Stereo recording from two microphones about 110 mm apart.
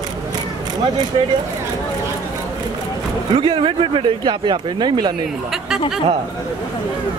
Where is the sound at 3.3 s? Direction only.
50° right (ahead or behind).